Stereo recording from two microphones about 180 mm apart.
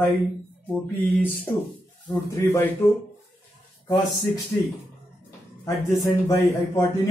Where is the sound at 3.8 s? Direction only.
25° left (ahead or behind).